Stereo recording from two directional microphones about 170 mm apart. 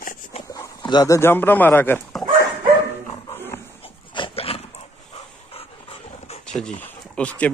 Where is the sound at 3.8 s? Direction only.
35° left (ahead or behind).